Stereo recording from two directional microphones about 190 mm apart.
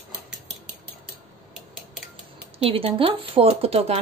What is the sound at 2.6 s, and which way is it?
A woman's voice, 30° right (ahead or behind).